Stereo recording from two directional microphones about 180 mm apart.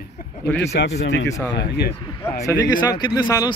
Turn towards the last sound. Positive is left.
turn(degrees=20)  # may be behind; listen again after turning